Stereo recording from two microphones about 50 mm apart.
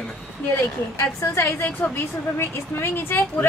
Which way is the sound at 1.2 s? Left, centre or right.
Left.